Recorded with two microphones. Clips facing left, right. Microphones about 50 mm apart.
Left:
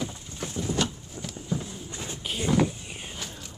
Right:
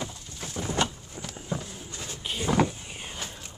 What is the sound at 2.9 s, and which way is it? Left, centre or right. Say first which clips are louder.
Walk: even; centre.